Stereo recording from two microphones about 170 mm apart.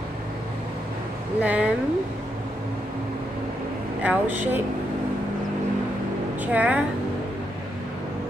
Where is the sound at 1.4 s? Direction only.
5° right (ahead or behind).